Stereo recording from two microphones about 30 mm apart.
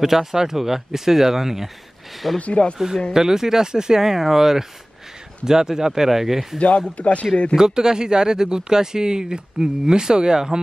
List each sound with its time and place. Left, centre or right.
0.0 s speech: centre
2.3 s speech: left
3.1 s speech: centre
7.0 s speech: left
7.5 s speech: right